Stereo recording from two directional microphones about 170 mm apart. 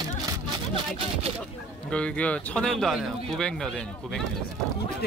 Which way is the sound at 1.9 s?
5° left (ahead or behind).